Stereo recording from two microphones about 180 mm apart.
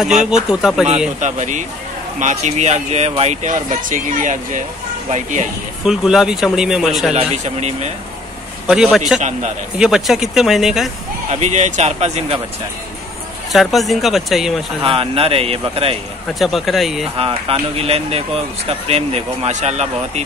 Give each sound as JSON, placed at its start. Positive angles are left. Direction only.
{"t": 0.5, "sound": "speech", "side_deg": 0}
{"t": 1.2, "sound": "speech", "side_deg": -40}
{"t": 5.9, "sound": "speech", "side_deg": -5}
{"t": 7.2, "sound": "speech", "side_deg": -40}
{"t": 8.6, "sound": "speech", "side_deg": -5}
{"t": 11.2, "sound": "speech", "side_deg": -40}
{"t": 13.5, "sound": "speech", "side_deg": 0}
{"t": 14.8, "sound": "speech", "side_deg": -30}
{"t": 16.3, "sound": "speech", "side_deg": 0}
{"t": 17.2, "sound": "speech", "side_deg": -35}